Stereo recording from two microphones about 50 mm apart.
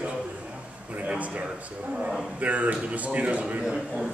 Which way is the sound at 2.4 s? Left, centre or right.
Right.